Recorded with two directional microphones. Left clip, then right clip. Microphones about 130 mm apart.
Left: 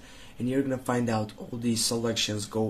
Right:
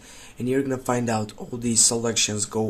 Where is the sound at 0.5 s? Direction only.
40° right (ahead or behind).